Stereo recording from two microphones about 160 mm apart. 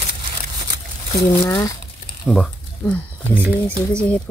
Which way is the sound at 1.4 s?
25° left (ahead or behind).